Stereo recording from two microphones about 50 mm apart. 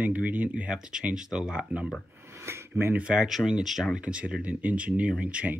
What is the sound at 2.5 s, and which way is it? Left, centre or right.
Speech, right.